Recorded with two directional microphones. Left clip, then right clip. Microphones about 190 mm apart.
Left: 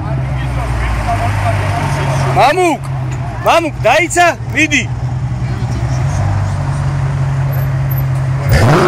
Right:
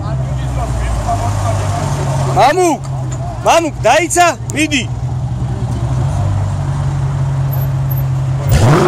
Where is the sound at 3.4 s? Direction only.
20° right (ahead or behind).